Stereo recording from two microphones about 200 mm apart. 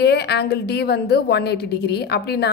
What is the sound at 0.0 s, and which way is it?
A woman's voice, 55° left (ahead or behind).